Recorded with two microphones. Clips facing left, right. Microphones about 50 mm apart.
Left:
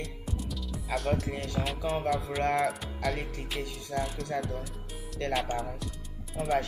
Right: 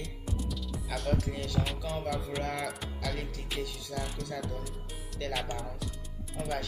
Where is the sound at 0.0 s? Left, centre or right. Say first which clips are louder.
Left 1 dB; centre.